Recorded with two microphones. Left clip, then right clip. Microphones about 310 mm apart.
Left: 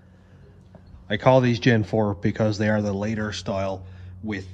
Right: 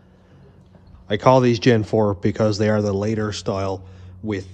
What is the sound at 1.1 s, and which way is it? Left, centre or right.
A man's voice, right.